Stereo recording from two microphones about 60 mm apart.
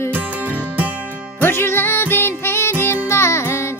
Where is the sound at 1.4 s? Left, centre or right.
Left.